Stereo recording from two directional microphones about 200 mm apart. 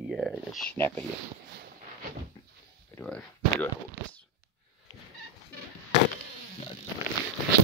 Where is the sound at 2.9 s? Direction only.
10° left (ahead or behind).